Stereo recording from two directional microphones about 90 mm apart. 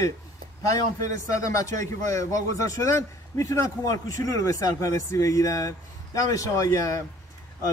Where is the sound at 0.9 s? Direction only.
35° left (ahead or behind).